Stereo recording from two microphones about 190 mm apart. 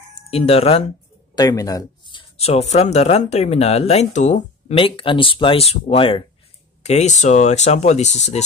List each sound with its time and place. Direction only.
0.3 s speech: 30° left (ahead or behind)
1.3 s speech: 20° left (ahead or behind); by 8.4 s 35° left (ahead or behind)